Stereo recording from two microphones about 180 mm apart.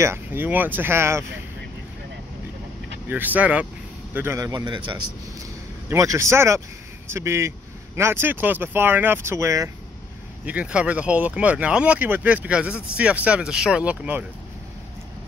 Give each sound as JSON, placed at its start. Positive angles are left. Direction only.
{"t": 0.0, "sound": "speech", "side_deg": -10}
{"t": 3.1, "sound": "a man's voice", "side_deg": -10}